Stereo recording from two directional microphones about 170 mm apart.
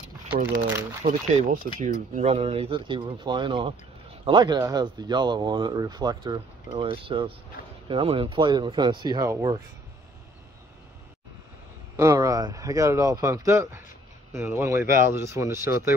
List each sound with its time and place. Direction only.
1.0 s speech: 45° right (ahead or behind); by 9.6 s 20° right (ahead or behind)
12.0 s speech: 20° right (ahead or behind)